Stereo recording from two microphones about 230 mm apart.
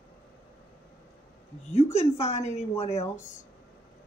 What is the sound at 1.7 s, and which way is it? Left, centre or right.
A woman's voice, left.